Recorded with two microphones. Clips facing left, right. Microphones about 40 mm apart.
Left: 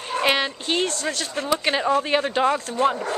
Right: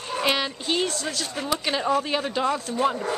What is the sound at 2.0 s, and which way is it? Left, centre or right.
Speech, centre.